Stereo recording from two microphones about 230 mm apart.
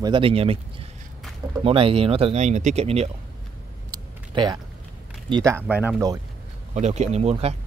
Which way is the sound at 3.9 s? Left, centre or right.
Centre.